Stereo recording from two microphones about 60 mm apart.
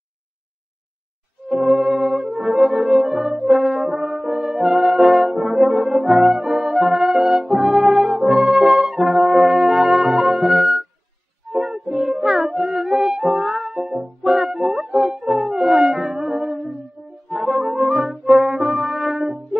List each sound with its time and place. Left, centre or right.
1.5 s brass instrument: centre
2.3 s french horn: centre
7.4 s brass instrument: centre
11.5 s music: centre
18.2 s brass instrument: centre